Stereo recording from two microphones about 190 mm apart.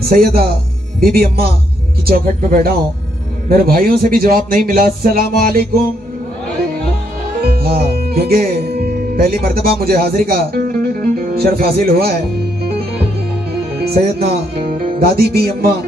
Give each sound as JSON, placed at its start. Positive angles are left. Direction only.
{"t": 0.1, "sound": "speech", "side_deg": -55}
{"t": 7.5, "sound": "speech", "side_deg": -55}
{"t": 13.7, "sound": "music", "side_deg": -55}